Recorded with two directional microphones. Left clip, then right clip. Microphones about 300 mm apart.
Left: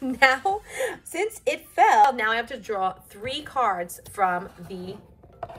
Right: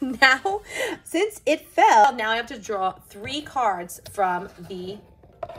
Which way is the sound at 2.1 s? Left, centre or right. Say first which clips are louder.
Even; centre.